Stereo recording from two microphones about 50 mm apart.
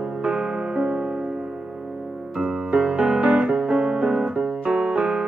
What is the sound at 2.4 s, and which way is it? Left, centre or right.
Music, centre.